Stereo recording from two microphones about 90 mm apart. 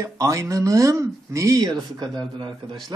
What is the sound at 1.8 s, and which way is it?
A man's voice, 50° right (ahead or behind).